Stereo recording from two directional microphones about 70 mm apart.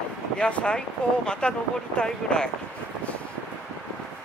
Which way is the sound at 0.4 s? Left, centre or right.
Centre.